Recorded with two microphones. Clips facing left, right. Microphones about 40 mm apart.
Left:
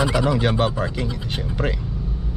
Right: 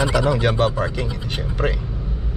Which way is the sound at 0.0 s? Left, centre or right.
Centre.